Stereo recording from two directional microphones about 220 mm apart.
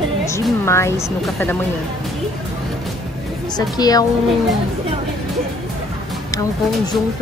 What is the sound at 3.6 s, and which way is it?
Speech, 15° left (ahead or behind).